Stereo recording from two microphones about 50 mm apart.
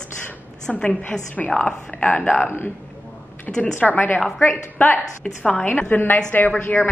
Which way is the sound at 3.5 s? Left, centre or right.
Left.